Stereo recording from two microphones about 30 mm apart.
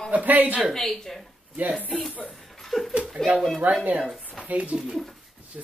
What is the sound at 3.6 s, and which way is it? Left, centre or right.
Speech, right.